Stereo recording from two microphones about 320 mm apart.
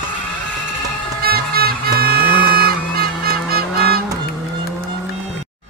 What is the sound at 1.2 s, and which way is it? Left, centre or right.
Music, right.